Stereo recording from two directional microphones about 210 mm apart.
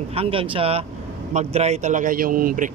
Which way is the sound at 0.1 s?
25° right (ahead or behind).